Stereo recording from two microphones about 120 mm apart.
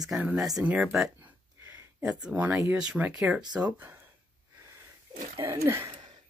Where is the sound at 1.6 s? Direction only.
20° right (ahead or behind).